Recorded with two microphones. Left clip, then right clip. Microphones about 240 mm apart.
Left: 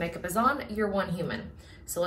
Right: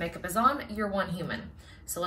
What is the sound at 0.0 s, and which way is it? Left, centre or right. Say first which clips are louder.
Speech: right 1 dB; centre.